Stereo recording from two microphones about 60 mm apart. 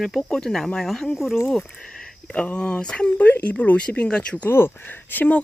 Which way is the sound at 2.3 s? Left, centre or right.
Left.